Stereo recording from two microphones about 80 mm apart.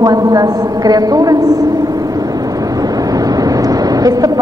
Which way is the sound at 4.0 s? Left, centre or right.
Right.